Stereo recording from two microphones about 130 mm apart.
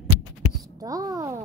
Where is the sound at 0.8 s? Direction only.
30° right (ahead or behind).